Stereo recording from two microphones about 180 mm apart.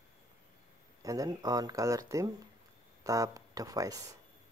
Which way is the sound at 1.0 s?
20° right (ahead or behind).